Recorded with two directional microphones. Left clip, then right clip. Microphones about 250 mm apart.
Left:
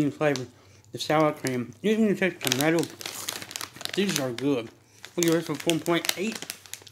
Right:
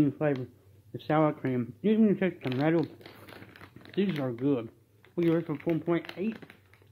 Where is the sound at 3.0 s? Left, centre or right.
Left.